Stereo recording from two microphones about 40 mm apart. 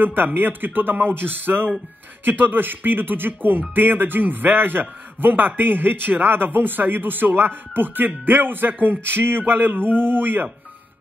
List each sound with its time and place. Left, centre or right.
0.0 s speech: right